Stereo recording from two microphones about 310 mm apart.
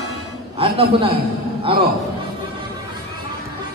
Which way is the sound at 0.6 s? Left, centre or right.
Centre.